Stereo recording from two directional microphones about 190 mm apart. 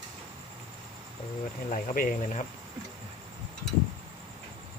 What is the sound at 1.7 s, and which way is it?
Speech, 45° left (ahead or behind).